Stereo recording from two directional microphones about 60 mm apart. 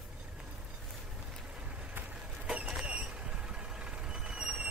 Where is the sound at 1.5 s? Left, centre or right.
Centre.